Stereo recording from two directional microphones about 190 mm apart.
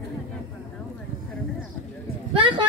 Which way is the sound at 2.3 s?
25° right (ahead or behind).